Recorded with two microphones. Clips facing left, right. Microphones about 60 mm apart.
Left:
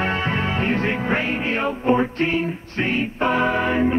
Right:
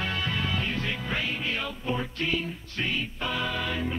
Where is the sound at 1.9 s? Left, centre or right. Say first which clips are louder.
Left 10 dB; left.